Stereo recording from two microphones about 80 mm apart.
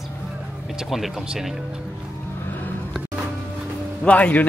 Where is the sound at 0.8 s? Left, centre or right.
Centre.